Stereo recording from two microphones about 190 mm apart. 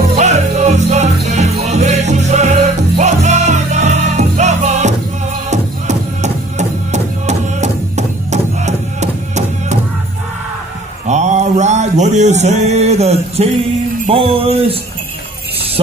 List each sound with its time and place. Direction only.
0.1 s music: 35° right (ahead or behind)
11.1 s mantra: 35° right (ahead or behind)
14.0 s music: 30° right (ahead or behind)